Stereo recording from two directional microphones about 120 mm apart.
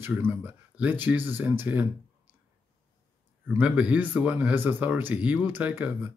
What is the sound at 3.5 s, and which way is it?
Speech, 10° right (ahead or behind).